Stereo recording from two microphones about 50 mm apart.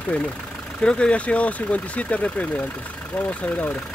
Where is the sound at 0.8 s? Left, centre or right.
Centre.